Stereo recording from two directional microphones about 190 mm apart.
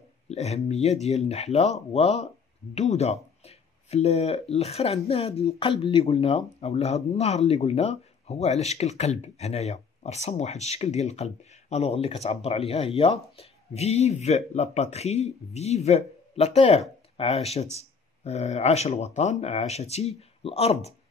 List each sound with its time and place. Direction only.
0.3 s speech: 35° left (ahead or behind)